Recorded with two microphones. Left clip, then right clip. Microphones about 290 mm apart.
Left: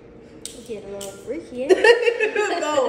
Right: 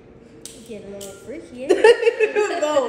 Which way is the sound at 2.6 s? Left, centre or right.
Centre.